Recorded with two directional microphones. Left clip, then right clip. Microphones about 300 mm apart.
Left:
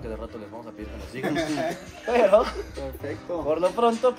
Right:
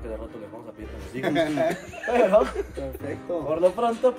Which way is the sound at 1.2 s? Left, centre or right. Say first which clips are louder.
Right 2 dB; centre.